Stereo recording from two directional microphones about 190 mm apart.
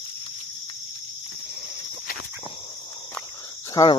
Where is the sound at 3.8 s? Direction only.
20° left (ahead or behind).